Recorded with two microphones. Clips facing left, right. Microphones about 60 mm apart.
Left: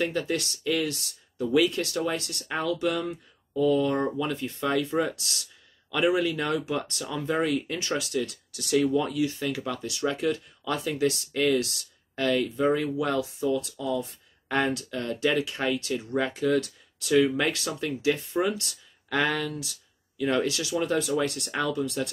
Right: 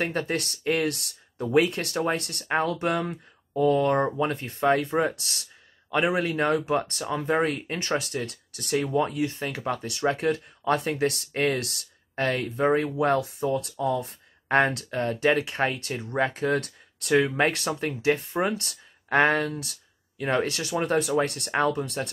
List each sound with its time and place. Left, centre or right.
0.0 s speech: right
9.8 s speech: right
15.0 s speech: right
21.2 s speech: right
21.5 s speech: right